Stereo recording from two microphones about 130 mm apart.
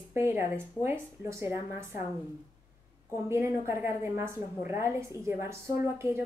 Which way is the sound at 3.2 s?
20° right (ahead or behind).